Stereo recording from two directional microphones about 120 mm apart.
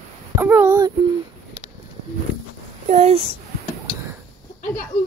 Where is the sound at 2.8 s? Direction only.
70° right (ahead or behind).